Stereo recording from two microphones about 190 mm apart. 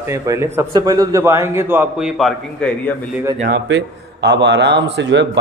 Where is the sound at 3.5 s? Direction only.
65° right (ahead or behind).